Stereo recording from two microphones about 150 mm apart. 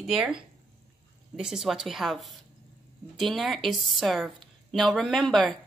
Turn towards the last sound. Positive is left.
turn(degrees=0)  # may be behind; listen again after turning